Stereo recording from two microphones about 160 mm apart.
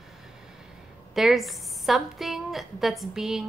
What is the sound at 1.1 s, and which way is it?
A woman's voice, centre (ahead or behind).